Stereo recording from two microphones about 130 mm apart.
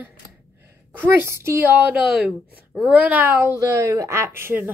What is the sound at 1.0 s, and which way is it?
Speech, 20° right (ahead or behind).